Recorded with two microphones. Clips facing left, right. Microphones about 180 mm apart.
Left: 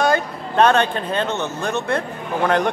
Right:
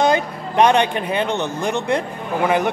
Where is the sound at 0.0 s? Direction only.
15° right (ahead or behind).